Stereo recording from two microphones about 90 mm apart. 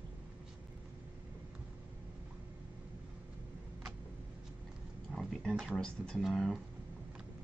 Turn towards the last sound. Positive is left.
turn(degrees=0)  # may be behind; listen again after turning